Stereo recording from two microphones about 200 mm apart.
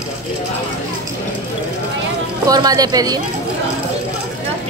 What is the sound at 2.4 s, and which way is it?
Speech, 20° right (ahead or behind).